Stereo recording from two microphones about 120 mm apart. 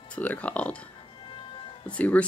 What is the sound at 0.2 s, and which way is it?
Speech, 10° left (ahead or behind).